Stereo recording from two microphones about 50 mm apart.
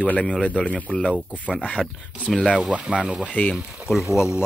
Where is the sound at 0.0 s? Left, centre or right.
Left.